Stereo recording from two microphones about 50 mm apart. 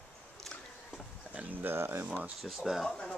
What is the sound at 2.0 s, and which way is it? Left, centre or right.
Speech, right.